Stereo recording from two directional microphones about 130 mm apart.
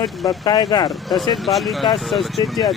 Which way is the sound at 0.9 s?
Centre (ahead or behind).